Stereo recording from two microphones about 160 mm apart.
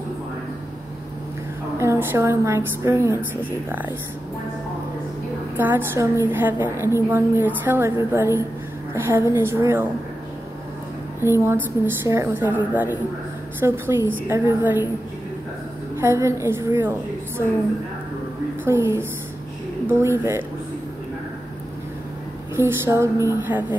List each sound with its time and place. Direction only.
1.8 s a woman's voice: 15° right (ahead or behind)
5.6 s a woman's voice: 15° right (ahead or behind)
11.1 s a woman's voice: 15° right (ahead or behind)
16.0 s a woman's voice: 15° right (ahead or behind)
18.6 s a woman's voice: 15° right (ahead or behind)
22.6 s a woman's voice: 15° right (ahead or behind)